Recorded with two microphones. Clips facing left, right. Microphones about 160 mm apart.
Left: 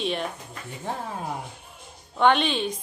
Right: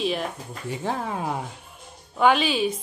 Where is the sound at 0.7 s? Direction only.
90° right.